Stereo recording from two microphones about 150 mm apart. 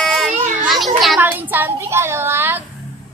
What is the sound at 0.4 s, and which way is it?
Children playing, 60° right (ahead or behind).